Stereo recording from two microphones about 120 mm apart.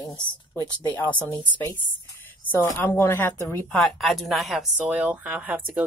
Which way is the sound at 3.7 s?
Centre (ahead or behind).